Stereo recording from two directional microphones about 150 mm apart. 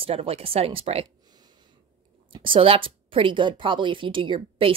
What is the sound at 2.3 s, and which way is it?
Speech, 35° right (ahead or behind).